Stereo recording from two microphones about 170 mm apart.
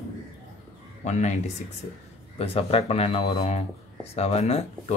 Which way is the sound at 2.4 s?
35° left (ahead or behind).